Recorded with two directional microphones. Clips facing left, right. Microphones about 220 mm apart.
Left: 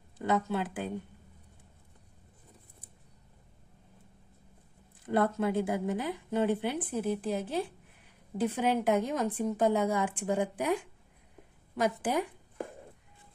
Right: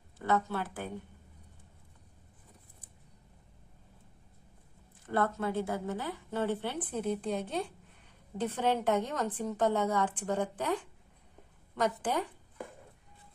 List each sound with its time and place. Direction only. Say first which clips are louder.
0.2 s a woman's voice: left 2 dB; 15° left (ahead or behind)
5.0 s a woman's voice: left 3 dB; 15° left (ahead or behind)